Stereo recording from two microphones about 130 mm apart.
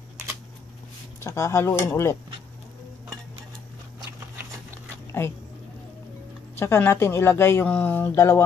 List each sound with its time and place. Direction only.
1.2 s speech: 25° left (ahead or behind)
6.5 s speech: 20° left (ahead or behind)